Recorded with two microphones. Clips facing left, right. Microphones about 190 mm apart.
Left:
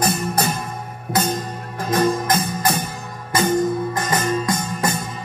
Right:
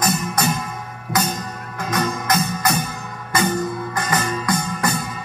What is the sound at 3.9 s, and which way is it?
Music, 25° left (ahead or behind).